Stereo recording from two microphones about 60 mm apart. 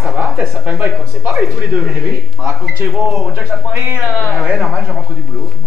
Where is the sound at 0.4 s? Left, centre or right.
Right.